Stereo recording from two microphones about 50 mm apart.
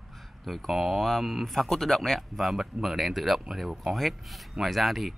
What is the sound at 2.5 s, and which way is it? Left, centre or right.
Speech, centre.